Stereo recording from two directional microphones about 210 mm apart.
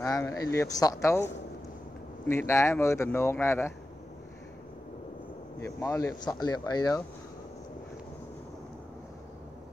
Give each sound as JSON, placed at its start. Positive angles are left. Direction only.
{"t": 0.0, "sound": "speech", "side_deg": 15}
{"t": 5.6, "sound": "speech", "side_deg": 15}